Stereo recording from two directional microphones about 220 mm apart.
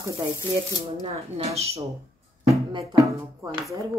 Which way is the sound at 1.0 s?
30° right (ahead or behind).